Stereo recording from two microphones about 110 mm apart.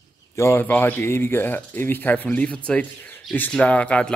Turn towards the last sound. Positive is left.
turn(degrees=10)  # may be behind; listen again after turning